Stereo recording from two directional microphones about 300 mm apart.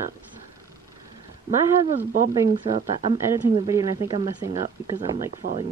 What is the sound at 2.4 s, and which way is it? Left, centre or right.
Speech, centre.